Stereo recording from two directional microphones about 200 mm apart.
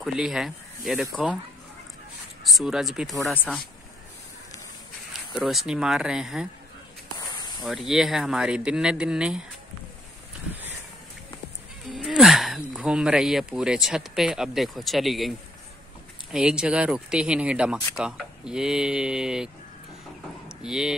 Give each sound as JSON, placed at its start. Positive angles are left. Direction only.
{"t": 0.0, "sound": "speech", "side_deg": 0}
{"t": 2.4, "sound": "speech", "side_deg": 0}
{"t": 5.3, "sound": "speech", "side_deg": 0}
{"t": 7.2, "sound": "spray", "side_deg": 20}
{"t": 7.6, "sound": "speech", "side_deg": 0}
{"t": 11.9, "sound": "speech", "side_deg": 0}
{"t": 20.4, "sound": "a sound", "side_deg": 0}